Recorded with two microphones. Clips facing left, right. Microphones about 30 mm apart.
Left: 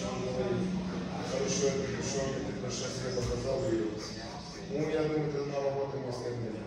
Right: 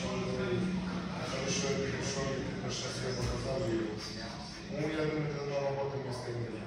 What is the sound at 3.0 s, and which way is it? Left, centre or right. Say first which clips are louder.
Music: left 4 dB; right.